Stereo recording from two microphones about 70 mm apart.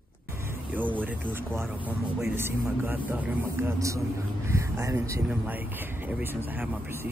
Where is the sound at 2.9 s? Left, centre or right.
Right.